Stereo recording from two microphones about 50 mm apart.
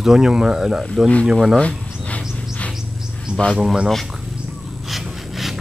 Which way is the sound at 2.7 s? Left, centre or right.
Centre.